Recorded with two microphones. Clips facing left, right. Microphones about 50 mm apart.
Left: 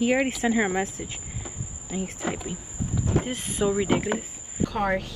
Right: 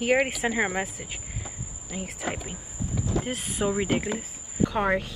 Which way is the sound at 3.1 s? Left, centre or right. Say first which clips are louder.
Left 3 dB; left.